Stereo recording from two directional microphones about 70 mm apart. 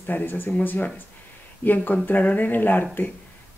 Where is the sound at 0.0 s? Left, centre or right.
Left.